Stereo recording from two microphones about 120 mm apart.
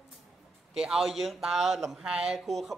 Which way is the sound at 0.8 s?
5° right (ahead or behind).